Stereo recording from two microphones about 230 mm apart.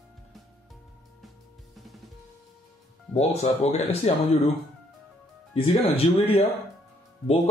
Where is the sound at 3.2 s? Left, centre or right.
Left.